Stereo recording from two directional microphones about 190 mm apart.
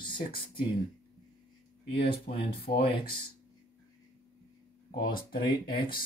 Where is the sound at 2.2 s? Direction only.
50° left (ahead or behind).